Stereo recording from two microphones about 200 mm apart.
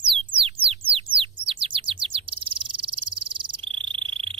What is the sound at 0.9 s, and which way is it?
Bird, 25° right (ahead or behind).